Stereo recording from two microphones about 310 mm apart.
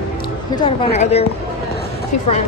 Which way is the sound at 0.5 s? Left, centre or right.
Centre.